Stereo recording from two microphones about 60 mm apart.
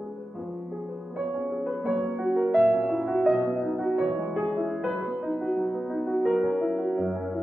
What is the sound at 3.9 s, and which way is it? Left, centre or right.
Music, centre.